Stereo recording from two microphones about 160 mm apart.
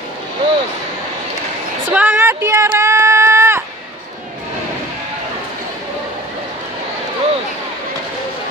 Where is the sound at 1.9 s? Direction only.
15° right (ahead or behind).